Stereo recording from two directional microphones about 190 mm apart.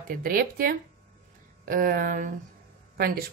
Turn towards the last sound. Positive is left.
turn(degrees=-55)  # may be behind; listen again after turning